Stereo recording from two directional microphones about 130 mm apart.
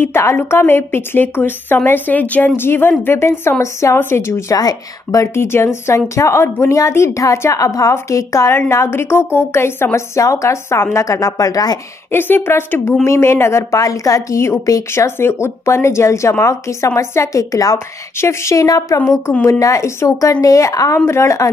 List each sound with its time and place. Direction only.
0.0 s a woman's voice: 20° left (ahead or behind)
12.1 s a woman's voice: 15° left (ahead or behind)